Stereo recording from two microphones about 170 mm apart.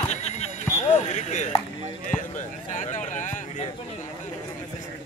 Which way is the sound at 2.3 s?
45° left (ahead or behind).